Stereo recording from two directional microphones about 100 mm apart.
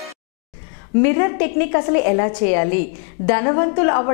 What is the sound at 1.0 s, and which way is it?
A woman's voice, 15° left (ahead or behind).